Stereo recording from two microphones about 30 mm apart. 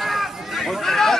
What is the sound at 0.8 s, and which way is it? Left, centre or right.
Speech, centre.